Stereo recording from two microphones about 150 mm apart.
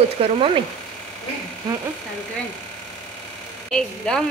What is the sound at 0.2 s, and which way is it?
Speech, 35° right (ahead or behind).